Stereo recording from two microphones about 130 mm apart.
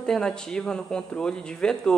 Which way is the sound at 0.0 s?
5° left (ahead or behind).